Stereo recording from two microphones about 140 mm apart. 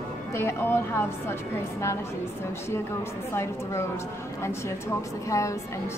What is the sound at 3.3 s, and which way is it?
Speech, 20° left (ahead or behind).